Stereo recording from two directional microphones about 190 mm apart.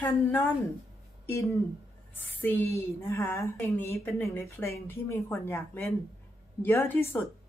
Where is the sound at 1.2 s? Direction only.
15° left (ahead or behind).